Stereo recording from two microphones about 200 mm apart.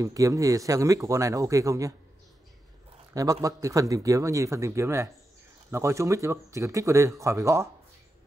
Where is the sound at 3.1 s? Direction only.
15° right (ahead or behind).